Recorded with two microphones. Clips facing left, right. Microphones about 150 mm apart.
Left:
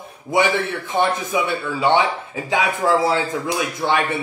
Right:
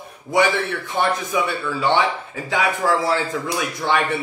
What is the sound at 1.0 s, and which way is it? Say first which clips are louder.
Speech: even; 25° left (ahead or behind).